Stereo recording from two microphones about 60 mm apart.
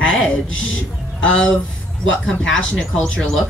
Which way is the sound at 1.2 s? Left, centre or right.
Centre.